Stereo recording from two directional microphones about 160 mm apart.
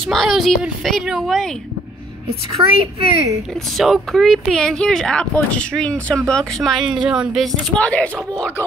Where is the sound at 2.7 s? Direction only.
35° right (ahead or behind).